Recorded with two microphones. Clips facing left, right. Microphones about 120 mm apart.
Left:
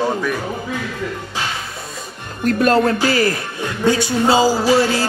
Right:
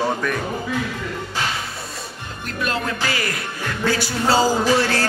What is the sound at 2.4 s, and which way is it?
Speech, 45° left (ahead or behind).